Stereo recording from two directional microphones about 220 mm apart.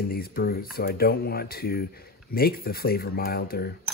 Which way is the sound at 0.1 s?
45° left (ahead or behind).